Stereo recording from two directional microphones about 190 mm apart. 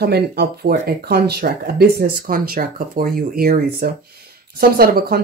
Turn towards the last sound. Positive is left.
turn(degrees=-55)  # may be behind; listen again after turning